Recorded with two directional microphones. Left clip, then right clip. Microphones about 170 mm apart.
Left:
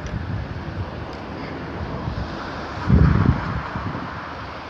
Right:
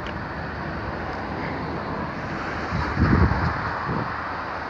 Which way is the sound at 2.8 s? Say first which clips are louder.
Left 1 dB; 50° left (ahead or behind).